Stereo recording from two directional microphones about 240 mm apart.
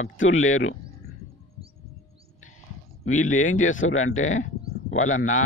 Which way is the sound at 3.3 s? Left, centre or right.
Left.